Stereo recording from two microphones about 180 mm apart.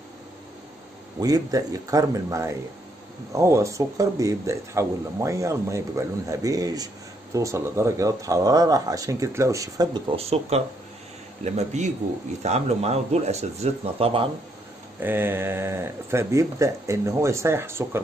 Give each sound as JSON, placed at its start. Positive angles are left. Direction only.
{"t": 1.2, "sound": "speech", "side_deg": -20}
{"t": 10.1, "sound": "speech", "side_deg": -35}
{"t": 15.0, "sound": "speech", "side_deg": -10}